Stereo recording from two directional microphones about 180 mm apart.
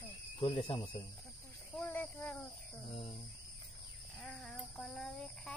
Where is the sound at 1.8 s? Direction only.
10° left (ahead or behind).